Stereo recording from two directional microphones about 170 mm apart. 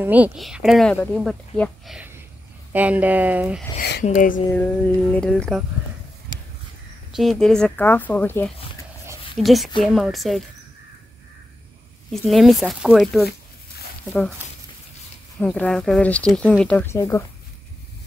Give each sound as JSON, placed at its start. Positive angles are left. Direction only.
{"t": 0.0, "sound": "speech", "side_deg": -10}
{"t": 4.0, "sound": "speech", "side_deg": 50}
{"t": 4.5, "sound": "speech", "side_deg": 10}
{"t": 7.1, "sound": "speech", "side_deg": 0}
{"t": 9.4, "sound": "speech", "side_deg": 0}
{"t": 12.1, "sound": "speech", "side_deg": 0}
{"t": 15.3, "sound": "speech", "side_deg": 5}